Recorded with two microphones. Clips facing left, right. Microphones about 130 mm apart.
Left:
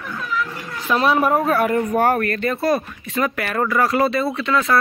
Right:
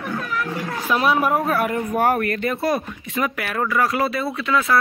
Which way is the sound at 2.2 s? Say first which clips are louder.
Left 1 dB; 15° right (ahead or behind).